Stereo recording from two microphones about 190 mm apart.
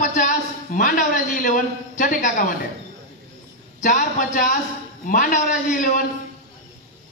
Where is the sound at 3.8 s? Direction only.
45° left (ahead or behind).